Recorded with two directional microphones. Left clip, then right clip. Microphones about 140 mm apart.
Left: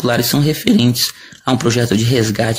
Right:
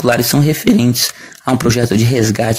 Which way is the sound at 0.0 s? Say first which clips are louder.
Right 2 dB; 25° right (ahead or behind).